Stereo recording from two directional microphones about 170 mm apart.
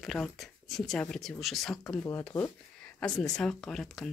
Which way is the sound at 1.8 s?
20° left (ahead or behind).